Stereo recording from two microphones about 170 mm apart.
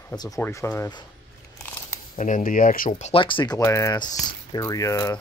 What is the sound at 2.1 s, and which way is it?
Speech, 50° left (ahead or behind).